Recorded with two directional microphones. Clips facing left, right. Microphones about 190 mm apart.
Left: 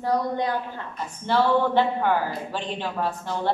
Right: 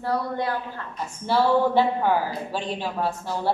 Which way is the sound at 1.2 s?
10° right (ahead or behind).